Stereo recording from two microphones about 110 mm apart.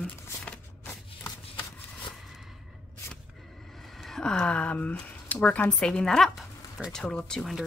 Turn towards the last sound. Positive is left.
turn(degrees=5)  # may be behind; listen again after turning